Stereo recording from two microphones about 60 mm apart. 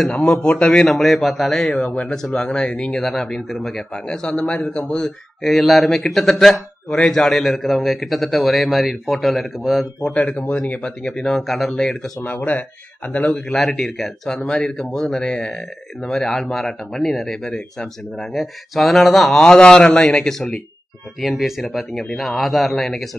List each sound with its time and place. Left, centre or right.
0.3 s speech: centre
0.9 s speech: centre
2.9 s speech: centre
4.9 s speech: centre
10.5 s speech: centre
12.4 s speech: left
13.3 s speech: centre